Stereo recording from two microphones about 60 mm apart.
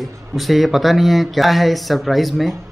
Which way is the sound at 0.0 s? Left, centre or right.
Centre.